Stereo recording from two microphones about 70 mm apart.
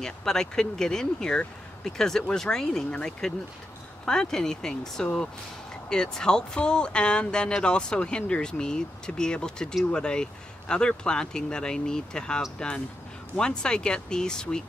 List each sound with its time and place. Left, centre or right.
0.0 s speech: centre